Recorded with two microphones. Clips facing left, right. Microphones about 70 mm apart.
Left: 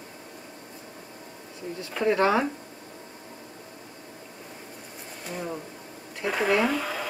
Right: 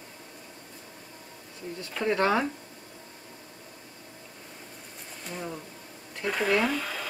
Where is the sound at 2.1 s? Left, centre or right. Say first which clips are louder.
Left 2 dB; centre.